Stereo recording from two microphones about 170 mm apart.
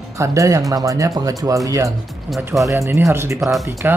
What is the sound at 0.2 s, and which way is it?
Speech, 20° right (ahead or behind).